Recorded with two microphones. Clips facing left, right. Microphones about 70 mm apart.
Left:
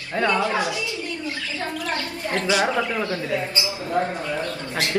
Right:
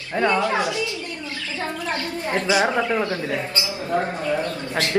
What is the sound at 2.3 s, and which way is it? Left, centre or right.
Speech, right.